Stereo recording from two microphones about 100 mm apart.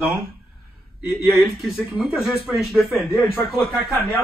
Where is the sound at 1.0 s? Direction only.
5° right (ahead or behind).